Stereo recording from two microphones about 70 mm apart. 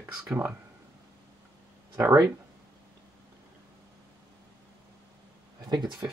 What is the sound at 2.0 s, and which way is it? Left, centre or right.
Speech, right.